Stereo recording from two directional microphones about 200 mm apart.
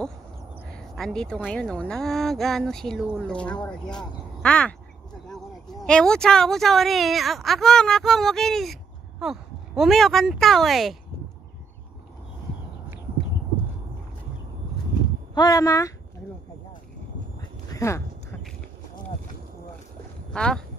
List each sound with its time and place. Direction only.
0.7 s speech: 5° left (ahead or behind)
5.8 s speech: 5° left (ahead or behind)
15.3 s speech: 20° left (ahead or behind)
17.4 s a sound: 15° left (ahead or behind)
20.3 s speech: 5° left (ahead or behind)